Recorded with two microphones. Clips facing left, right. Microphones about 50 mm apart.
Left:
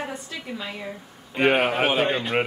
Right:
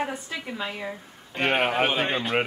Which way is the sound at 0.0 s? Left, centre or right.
Centre.